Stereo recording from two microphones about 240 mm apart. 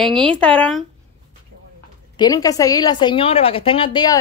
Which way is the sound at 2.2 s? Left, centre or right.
Centre.